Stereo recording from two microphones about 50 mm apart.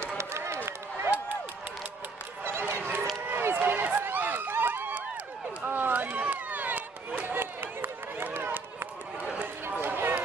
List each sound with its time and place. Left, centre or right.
0.2 s run: right
2.4 s run: right
9.2 s a sound: right
9.7 s music: right